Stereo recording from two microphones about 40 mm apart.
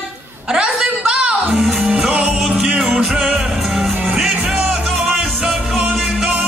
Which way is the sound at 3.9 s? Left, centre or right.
Right.